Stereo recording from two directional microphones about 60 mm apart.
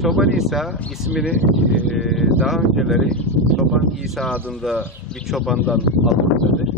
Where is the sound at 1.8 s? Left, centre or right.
Centre.